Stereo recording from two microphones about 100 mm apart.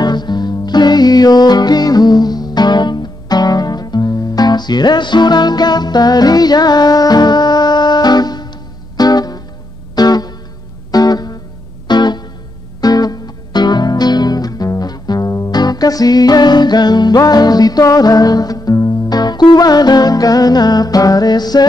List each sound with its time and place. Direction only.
0.0 s music: 45° left (ahead or behind)